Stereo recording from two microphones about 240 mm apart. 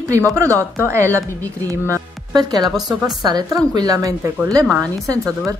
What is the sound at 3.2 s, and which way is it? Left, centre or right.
Speech, centre.